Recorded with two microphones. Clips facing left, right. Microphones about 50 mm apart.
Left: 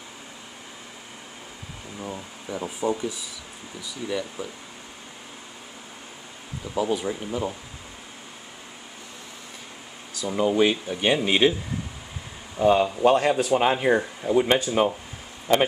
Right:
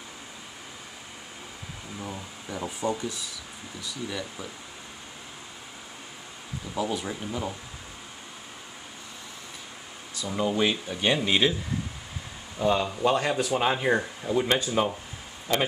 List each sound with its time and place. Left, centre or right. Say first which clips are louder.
2.0 s speech: left 3 dB; centre
6.7 s speech: left 5 dB; centre
10.2 s speech: left 5 dB; centre
12.5 s speech: left 6 dB; centre
15.5 s speech: left 6 dB; left